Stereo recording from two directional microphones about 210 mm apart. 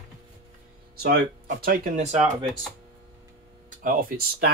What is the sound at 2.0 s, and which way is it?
Speech, 30° right (ahead or behind).